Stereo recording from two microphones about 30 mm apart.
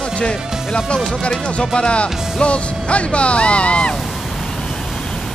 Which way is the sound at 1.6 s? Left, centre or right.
Left.